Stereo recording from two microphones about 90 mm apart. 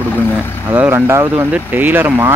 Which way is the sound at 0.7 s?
25° right (ahead or behind).